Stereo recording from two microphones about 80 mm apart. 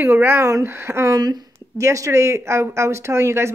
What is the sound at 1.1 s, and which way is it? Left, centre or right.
Speech, right.